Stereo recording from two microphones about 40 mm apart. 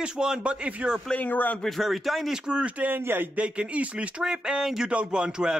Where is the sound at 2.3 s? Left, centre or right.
Right.